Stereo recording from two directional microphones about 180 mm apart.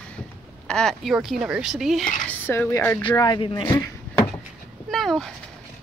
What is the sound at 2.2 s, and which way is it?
Speech, 10° left (ahead or behind).